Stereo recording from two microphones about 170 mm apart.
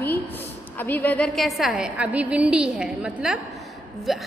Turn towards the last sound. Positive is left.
turn(degrees=0)  # may be behind; listen again after turning